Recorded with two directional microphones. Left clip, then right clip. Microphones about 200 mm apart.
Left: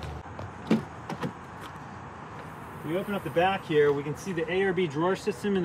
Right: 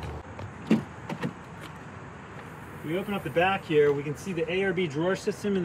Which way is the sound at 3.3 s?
10° left (ahead or behind).